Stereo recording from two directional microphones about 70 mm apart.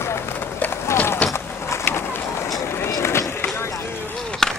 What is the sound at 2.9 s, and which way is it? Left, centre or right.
Skateboard, left.